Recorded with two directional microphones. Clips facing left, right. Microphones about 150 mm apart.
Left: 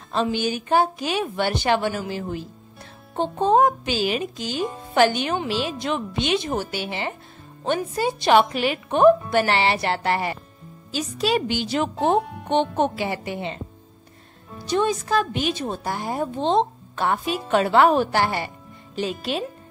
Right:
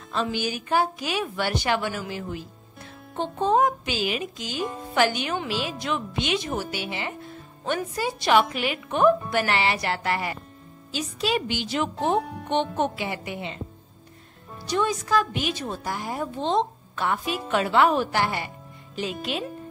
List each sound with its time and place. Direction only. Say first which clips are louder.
0.1 s a woman's voice: left 4 dB; 30° left (ahead or behind)
10.9 s speech: left 3 dB; 40° left (ahead or behind)
14.7 s speech: left 2 dB; 25° left (ahead or behind)